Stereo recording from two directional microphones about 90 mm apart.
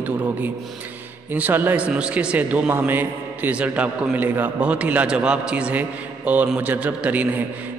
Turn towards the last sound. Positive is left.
turn(degrees=-15)  # may be behind; listen again after turning